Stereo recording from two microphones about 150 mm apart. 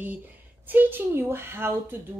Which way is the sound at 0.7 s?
15° right (ahead or behind).